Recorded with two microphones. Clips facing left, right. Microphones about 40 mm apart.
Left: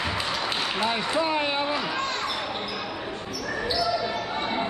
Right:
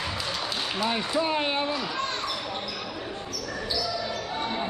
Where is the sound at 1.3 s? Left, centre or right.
Left.